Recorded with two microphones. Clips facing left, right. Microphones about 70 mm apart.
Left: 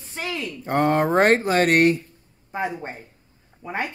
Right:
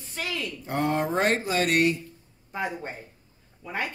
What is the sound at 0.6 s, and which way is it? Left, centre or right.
Speech, left.